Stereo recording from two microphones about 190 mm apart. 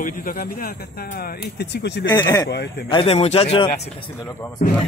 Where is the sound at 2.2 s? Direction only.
15° left (ahead or behind).